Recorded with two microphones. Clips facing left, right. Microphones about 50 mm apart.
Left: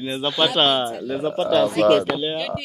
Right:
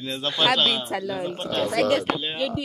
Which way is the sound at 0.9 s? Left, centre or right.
Right.